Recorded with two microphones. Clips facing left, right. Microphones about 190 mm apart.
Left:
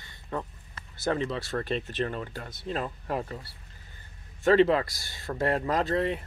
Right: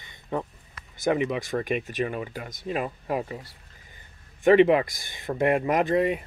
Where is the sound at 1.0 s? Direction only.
15° right (ahead or behind).